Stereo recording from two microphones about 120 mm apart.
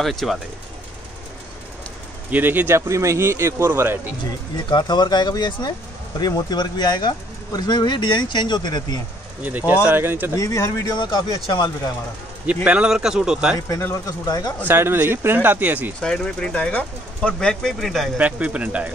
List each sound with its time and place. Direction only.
0.0 s a man's voice: centre (ahead or behind)
2.3 s speech: 15° right (ahead or behind)
4.6 s speech: 35° left (ahead or behind)
9.4 s speech: 15° right (ahead or behind)
10.3 s speech: 25° left (ahead or behind)
11.0 s speech: 40° left (ahead or behind)
12.6 s a man's voice: 10° right (ahead or behind)
13.7 s speech: 20° left (ahead or behind)
14.2 s speech: 35° left (ahead or behind)
14.7 s speech: 20° right (ahead or behind)
16.0 s speech: 5° left (ahead or behind)
18.1 s speech: 10° right (ahead or behind)